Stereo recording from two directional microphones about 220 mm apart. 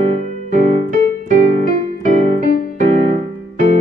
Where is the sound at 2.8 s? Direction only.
30° right (ahead or behind).